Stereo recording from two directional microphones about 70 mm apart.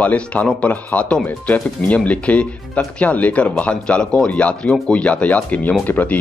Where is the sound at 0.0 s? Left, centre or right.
Centre.